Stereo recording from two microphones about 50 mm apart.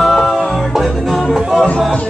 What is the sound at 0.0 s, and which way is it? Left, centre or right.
Music, centre.